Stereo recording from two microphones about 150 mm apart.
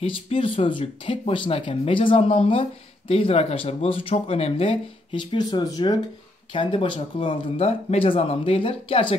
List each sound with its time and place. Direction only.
0.0 s speech: 40° left (ahead or behind)
5.2 s speech: 30° left (ahead or behind)